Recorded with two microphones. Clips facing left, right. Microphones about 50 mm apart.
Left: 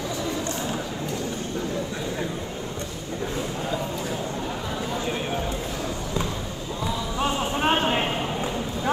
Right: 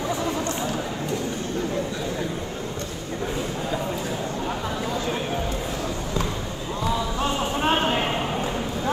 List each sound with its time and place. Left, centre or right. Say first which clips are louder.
7.2 s basketball bounce: even; left